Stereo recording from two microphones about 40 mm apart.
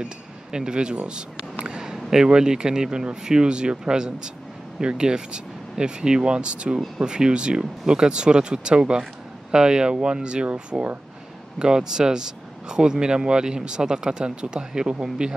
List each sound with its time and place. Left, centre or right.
0.0 s speech: centre
11.5 s speech: centre